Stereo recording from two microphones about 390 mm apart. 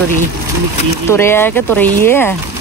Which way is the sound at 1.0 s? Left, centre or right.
Centre.